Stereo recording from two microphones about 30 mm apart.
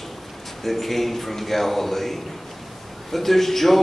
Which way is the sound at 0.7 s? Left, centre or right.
Centre.